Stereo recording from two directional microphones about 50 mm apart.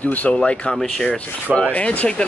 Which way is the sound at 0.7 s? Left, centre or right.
Centre.